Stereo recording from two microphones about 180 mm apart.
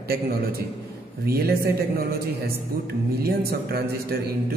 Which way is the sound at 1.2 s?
60° right (ahead or behind).